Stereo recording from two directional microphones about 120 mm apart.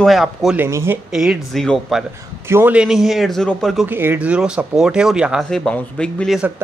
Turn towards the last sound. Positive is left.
turn(degrees=-15)  # may be behind; listen again after turning